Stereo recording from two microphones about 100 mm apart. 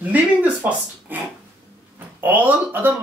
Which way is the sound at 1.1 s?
20° right (ahead or behind).